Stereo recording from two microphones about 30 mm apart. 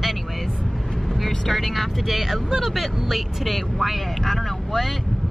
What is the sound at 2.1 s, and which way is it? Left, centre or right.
Speech, centre.